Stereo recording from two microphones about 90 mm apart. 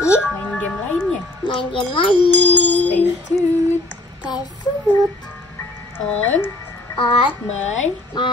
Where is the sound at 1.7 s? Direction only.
70° left (ahead or behind).